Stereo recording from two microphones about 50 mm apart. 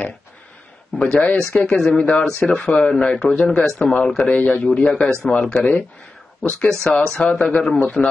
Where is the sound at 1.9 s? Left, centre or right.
Left.